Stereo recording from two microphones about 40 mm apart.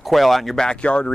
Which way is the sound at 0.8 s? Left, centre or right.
Left.